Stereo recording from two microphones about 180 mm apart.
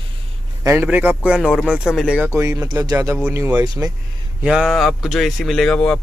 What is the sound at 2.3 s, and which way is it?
Speech, 15° right (ahead or behind).